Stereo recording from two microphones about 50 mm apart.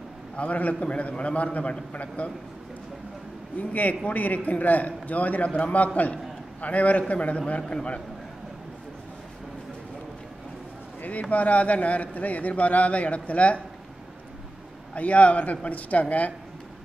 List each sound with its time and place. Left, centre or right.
0.4 s a man's voice: left
3.5 s a man's voice: left
11.0 s a man's voice: left
15.0 s a man's voice: left